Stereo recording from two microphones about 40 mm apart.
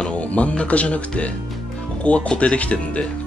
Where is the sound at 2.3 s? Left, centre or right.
Left.